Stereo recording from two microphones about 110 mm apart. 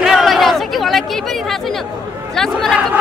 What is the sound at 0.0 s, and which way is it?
Chatter, centre (ahead or behind).